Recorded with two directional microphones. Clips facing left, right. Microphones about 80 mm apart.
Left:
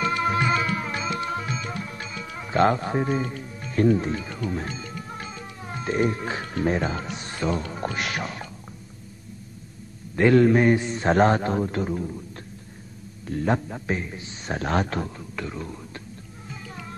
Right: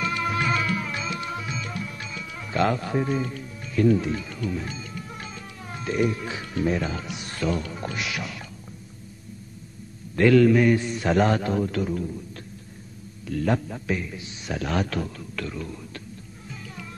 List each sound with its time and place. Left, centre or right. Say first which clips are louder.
0.2 s music: left 1 dB; left
3.2 s speech: left 1 dB; left
5.4 s speech: left 2 dB; left
7.3 s a man's voice: even; left
7.7 s a man's voice: left 2 dB; left
10.3 s a man's voice: even; left
13.3 s a man's voice: even; left